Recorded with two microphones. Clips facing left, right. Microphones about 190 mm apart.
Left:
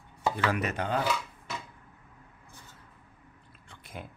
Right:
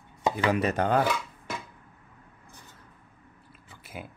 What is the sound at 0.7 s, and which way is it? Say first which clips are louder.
Dishes: right 5 dB; 55° right (ahead or behind).